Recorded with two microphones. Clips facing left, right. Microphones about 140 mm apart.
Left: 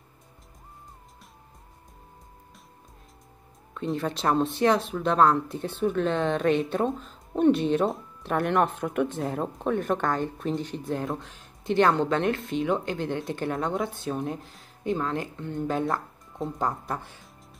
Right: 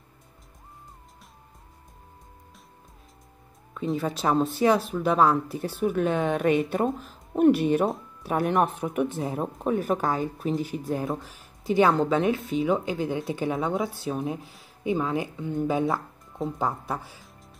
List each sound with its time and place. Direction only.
3.7 s speech: centre (ahead or behind)